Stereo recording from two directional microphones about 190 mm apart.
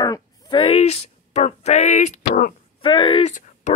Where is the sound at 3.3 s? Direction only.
40° left (ahead or behind).